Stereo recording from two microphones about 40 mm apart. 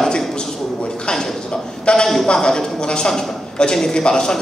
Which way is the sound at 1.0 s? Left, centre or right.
Centre.